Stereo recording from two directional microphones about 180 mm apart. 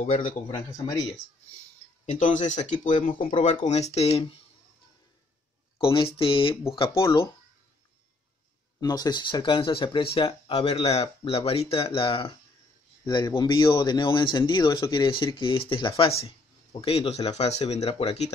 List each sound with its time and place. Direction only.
2.0 s speech: 40° left (ahead or behind)
5.8 s a man's voice: 30° left (ahead or behind)
6.9 s speech: 15° left (ahead or behind)
8.8 s a man's voice: 20° left (ahead or behind)